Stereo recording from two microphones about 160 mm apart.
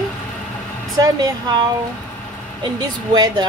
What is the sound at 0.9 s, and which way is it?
Speech, 20° right (ahead or behind).